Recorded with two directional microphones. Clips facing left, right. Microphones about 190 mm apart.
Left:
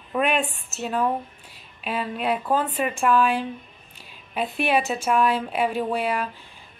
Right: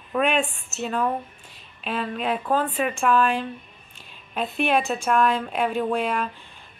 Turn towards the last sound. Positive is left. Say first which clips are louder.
# right 1 dB
turn(degrees=10)  # may be behind; listen again after turning